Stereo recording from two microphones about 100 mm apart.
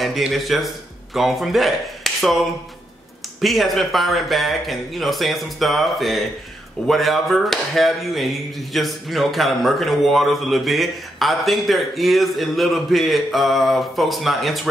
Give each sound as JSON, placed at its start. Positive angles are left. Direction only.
{"t": 0.0, "sound": "speech", "side_deg": 0}